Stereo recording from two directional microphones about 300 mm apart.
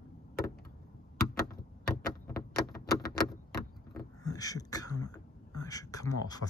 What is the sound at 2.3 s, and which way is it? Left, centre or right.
Door, left.